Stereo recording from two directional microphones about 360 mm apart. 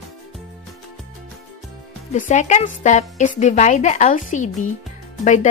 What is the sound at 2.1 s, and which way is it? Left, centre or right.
Speech, left.